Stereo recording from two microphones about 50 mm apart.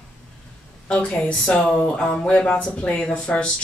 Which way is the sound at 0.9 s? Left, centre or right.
Left.